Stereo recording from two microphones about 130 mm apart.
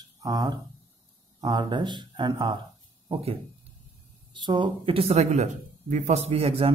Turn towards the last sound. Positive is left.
turn(degrees=-45)  # may be behind; listen again after turning